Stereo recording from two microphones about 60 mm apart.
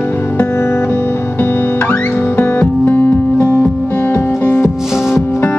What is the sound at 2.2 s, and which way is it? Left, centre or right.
Music, left.